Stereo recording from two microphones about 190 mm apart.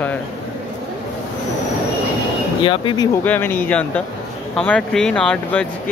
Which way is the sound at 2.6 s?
25° left (ahead or behind).